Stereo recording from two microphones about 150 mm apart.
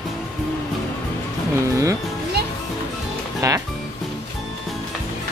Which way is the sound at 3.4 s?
20° right (ahead or behind).